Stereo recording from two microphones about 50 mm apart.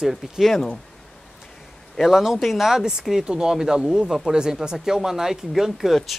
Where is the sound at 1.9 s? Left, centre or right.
Centre.